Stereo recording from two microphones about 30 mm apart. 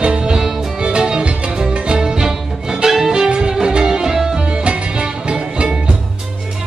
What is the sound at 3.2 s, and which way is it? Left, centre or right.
Music, right.